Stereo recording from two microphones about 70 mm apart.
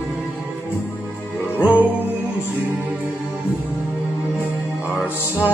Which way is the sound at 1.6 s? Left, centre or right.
Right.